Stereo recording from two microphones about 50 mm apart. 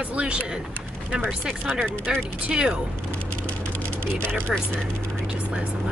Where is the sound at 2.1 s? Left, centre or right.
Centre.